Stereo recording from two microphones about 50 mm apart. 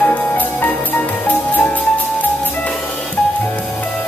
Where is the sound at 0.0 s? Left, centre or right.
Left.